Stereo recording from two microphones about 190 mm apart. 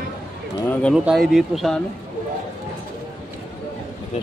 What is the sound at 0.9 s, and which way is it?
Speech, centre (ahead or behind).